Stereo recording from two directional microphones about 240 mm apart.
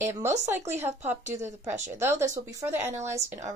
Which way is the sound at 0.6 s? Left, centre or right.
Right.